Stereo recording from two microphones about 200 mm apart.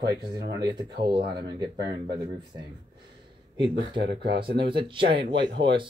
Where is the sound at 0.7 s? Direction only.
20° right (ahead or behind).